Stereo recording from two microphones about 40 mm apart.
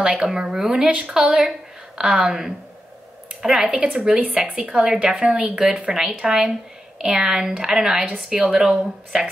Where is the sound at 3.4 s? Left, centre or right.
Centre.